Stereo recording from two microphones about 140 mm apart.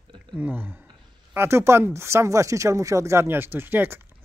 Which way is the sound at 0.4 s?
15° right (ahead or behind).